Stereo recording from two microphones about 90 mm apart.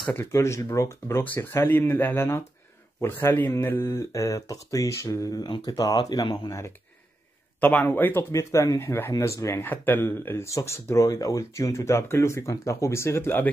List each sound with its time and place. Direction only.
0.1 s speech: 30° left (ahead or behind); by 6.5 s 50° left (ahead or behind)
7.6 s speech: 20° left (ahead or behind)
9.6 s speech: 20° left (ahead or behind)